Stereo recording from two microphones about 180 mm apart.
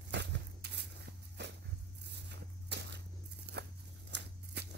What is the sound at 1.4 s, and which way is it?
Dog, 75° right (ahead or behind).